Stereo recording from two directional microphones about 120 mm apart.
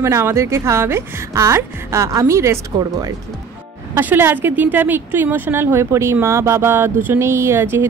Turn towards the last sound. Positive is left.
turn(degrees=-20)  # may be behind; listen again after turning